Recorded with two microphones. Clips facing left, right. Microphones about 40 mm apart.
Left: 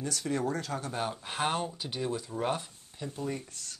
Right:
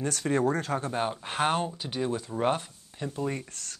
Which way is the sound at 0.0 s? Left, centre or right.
Right.